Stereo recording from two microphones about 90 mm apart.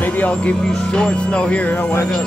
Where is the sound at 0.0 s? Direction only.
15° left (ahead or behind).